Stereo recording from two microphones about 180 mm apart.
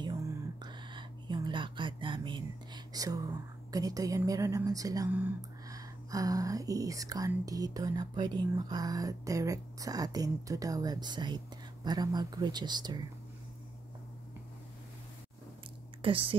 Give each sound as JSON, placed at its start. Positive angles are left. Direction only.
{"t": 0.0, "sound": "a sound", "side_deg": -25}
{"t": 3.7, "sound": "speech", "side_deg": -20}
{"t": 16.0, "sound": "a woman's voice", "side_deg": -30}